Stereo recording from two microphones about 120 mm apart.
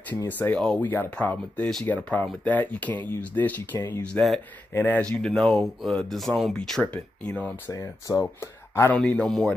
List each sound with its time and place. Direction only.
0.1 s speech: 15° left (ahead or behind)
4.7 s speech: 20° left (ahead or behind)
5.1 s speech: 5° left (ahead or behind)
7.7 s speech: 25° left (ahead or behind)
8.9 s speech: 10° left (ahead or behind)